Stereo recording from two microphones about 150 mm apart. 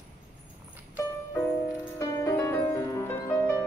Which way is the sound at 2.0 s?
15° left (ahead or behind).